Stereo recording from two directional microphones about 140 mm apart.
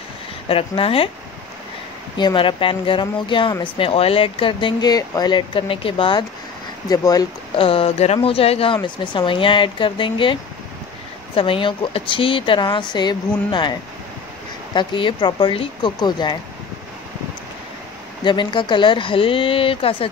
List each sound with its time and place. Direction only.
0.5 s speech: 40° left (ahead or behind)
2.1 s speech: 35° left (ahead or behind)
6.9 s speech: 25° left (ahead or behind)
7.5 s speech: 40° left (ahead or behind)
11.3 s speech: 40° left (ahead or behind)
18.2 s speech: 35° left (ahead or behind)